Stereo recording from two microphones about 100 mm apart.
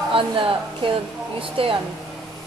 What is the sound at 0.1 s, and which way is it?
A woman's voice, 60° right (ahead or behind).